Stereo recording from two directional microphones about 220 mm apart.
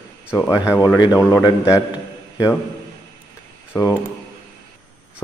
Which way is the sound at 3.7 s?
15° left (ahead or behind).